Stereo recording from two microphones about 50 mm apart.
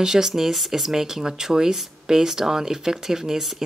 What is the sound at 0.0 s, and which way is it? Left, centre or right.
Speech, centre.